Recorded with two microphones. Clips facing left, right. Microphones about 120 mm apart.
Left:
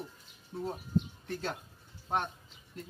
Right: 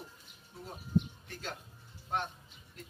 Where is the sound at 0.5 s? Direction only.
40° left (ahead or behind).